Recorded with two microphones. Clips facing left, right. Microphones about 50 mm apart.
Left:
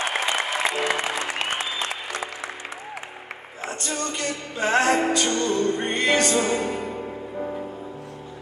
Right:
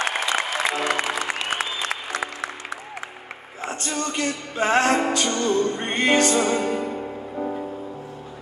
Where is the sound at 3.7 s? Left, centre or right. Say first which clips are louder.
Right 2 dB; right.